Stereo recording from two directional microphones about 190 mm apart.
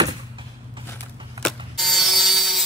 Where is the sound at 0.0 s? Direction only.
25° right (ahead or behind).